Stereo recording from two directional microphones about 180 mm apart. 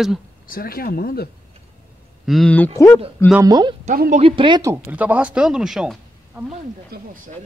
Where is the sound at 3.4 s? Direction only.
25° right (ahead or behind).